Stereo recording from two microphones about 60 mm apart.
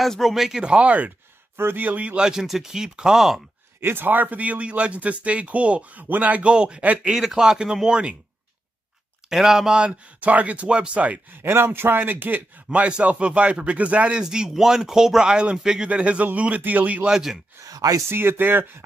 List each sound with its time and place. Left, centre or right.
0.0 s speech: centre; by 1.1 s right
1.6 s speech: right; by 3.3 s centre
3.8 s speech: right
7.0 s speech: centre
9.3 s speech: centre; by 11.1 s right
11.4 s speech: right
12.7 s speech: right
14.2 s speech: centre
17.1 s speech: centre
17.6 s speech: right
18.0 s speech: right